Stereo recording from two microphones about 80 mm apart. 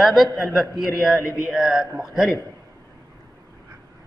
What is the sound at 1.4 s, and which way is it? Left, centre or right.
Speech, centre.